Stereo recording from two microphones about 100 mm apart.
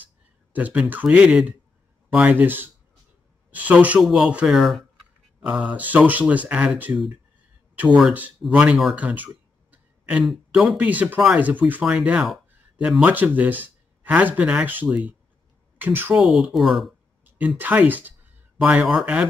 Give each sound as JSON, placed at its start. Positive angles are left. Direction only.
{"t": 0.5, "sound": "speech", "side_deg": -15}
{"t": 8.5, "sound": "speech", "side_deg": -10}
{"t": 8.9, "sound": "a sound", "side_deg": -15}
{"t": 10.2, "sound": "speech", "side_deg": 0}
{"t": 16.2, "sound": "speech", "side_deg": -5}
{"t": 17.2, "sound": "speech", "side_deg": -15}